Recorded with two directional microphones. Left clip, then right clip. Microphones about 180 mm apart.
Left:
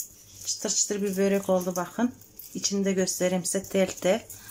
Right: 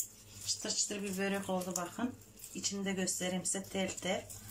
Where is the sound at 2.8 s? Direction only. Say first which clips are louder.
Left 12 dB; 60° left (ahead or behind).